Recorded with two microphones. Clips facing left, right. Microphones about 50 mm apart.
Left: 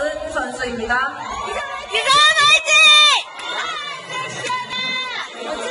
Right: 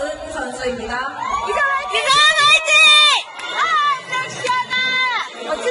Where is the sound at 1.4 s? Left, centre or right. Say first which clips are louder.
Right 9 dB; right.